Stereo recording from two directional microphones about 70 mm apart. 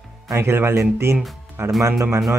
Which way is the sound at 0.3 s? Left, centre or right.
Right.